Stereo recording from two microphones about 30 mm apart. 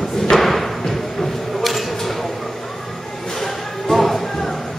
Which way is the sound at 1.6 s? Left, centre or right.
Centre.